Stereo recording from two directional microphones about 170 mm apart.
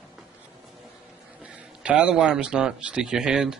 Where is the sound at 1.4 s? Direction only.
5° right (ahead or behind).